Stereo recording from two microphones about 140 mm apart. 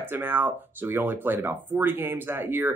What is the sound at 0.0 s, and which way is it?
Speech, 15° right (ahead or behind).